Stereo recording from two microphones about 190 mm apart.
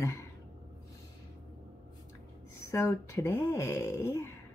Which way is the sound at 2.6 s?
15° left (ahead or behind).